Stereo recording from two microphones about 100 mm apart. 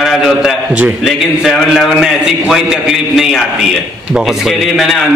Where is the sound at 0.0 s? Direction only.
5° right (ahead or behind).